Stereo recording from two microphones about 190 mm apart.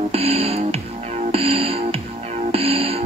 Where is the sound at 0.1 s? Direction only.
30° right (ahead or behind).